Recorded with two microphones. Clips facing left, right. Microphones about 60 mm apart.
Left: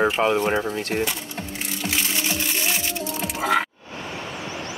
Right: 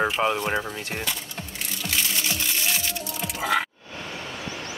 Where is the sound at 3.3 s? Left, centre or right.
Left.